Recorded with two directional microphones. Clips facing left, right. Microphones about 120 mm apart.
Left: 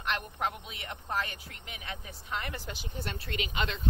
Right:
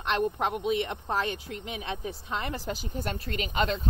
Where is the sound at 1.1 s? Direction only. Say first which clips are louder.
Right 5 dB; 30° right (ahead or behind).